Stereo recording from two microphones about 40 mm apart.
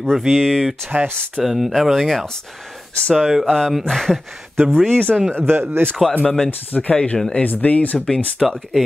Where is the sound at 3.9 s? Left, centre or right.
Centre.